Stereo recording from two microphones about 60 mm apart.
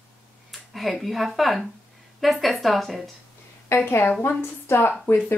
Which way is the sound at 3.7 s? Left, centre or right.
Left.